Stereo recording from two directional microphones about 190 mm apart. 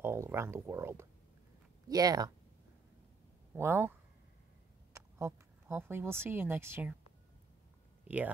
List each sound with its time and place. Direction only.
0.0 s speech: 15° right (ahead or behind)
3.5 s speech: 10° right (ahead or behind)
4.9 s speech: 15° right (ahead or behind)